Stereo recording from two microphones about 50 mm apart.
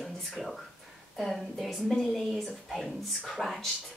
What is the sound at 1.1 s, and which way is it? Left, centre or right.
A woman's voice, centre.